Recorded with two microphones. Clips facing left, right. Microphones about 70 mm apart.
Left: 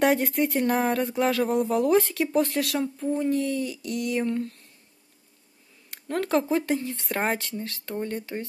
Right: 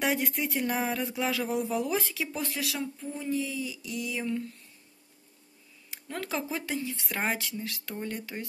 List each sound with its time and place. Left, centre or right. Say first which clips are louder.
0.0 s speech: left 7 dB; left
2.5 s a sound: left 7 dB; left
4.2 s speech: left 5 dB; left
5.9 s speech: left 8 dB; left
7.6 s speech: left 5 dB; left